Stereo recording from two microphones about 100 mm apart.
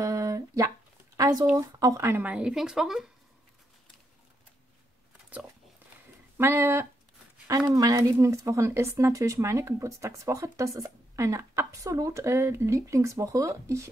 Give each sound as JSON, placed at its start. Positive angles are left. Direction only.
{"t": 0.0, "sound": "a sound", "side_deg": -35}
{"t": 1.1, "sound": "speech", "side_deg": -35}
{"t": 2.0, "sound": "a woman's voice", "side_deg": -20}
{"t": 6.3, "sound": "speech", "side_deg": -25}